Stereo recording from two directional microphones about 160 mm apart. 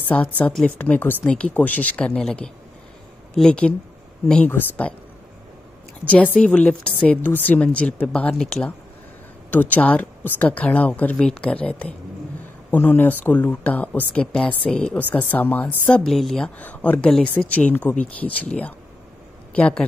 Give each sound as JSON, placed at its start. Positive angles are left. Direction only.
{"t": 0.1, "sound": "a woman's voice", "side_deg": 5}
{"t": 6.0, "sound": "a woman's voice", "side_deg": 10}